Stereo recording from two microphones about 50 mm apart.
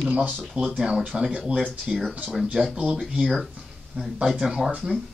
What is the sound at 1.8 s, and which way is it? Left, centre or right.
Speech, centre.